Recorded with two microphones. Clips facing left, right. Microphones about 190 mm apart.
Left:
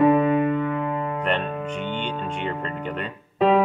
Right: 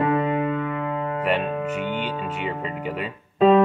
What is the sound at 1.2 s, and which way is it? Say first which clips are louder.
Speech: right 2 dB; 10° right (ahead or behind).